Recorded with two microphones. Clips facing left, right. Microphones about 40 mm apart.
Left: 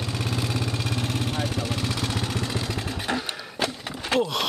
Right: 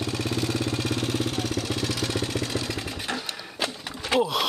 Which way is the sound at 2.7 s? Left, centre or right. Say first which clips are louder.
Left 2 dB; centre.